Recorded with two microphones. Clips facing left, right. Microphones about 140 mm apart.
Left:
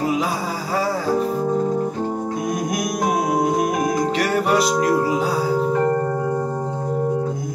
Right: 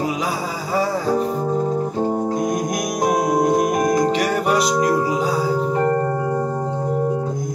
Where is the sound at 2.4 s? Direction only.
Centre (ahead or behind).